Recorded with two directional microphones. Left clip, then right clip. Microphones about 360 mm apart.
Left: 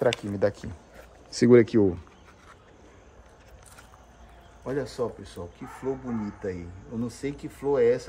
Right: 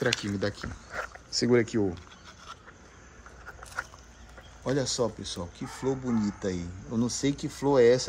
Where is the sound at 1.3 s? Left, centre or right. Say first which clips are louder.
Left 7 dB; centre.